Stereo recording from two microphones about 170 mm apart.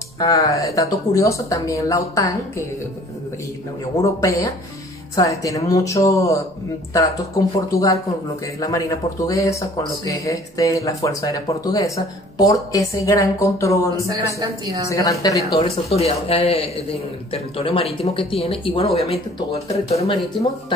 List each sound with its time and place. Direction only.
0.2 s speech: 20° left (ahead or behind)
4.0 s speech: 20° left (ahead or behind)
14.4 s a woman's voice: 20° right (ahead or behind)
14.9 s speech: 20° left (ahead or behind)
15.5 s speech: 35° left (ahead or behind)